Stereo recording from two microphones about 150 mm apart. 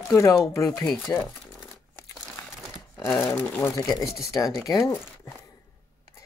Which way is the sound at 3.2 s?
20° left (ahead or behind).